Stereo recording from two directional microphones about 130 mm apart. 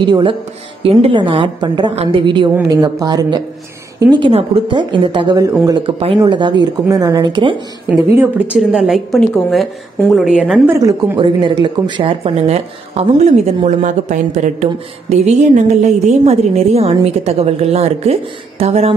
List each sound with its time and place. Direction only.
0.0 s speech: 40° right (ahead or behind)
2.7 s speech: 30° right (ahead or behind)
4.3 s speech: 45° right (ahead or behind)
5.4 s speech: 30° right (ahead or behind)
5.9 s speech: 45° right (ahead or behind)
8.2 s a woman's voice: 10° right (ahead or behind)
10.7 s speech: 20° right (ahead or behind)
11.1 s a woman's voice: 40° right (ahead or behind)